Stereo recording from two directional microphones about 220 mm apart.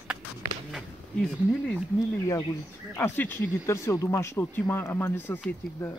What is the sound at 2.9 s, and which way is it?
Speech, 10° left (ahead or behind).